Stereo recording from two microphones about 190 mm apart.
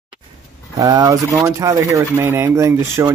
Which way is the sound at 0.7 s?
20° right (ahead or behind).